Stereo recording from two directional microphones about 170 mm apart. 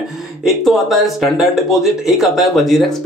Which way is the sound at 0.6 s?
Centre (ahead or behind).